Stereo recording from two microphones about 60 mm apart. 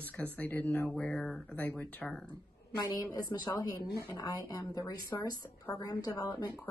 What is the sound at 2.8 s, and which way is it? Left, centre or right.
A woman's voice, left.